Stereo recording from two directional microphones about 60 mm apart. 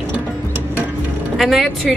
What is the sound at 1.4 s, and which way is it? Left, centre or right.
Speech, centre.